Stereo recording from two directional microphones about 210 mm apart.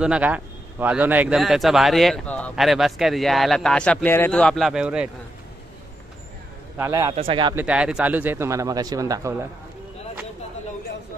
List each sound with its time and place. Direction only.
0.0 s speech: 5° right (ahead or behind)
6.8 s a man's voice: 15° right (ahead or behind)
7.5 s speech: 5° right (ahead or behind)